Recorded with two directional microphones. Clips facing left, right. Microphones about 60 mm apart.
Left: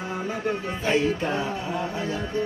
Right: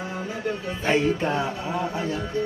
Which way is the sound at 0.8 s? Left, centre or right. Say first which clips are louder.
Right 1 dB; right.